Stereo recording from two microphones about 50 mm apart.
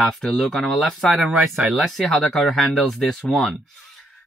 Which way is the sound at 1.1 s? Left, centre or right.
Centre.